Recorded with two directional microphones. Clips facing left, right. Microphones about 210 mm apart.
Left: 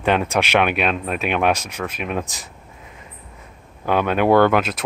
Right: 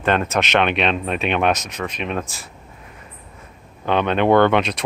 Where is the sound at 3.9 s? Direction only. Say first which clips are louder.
Even; 5° left (ahead or behind).